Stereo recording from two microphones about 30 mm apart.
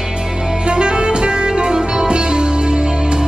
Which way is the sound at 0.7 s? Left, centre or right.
Right.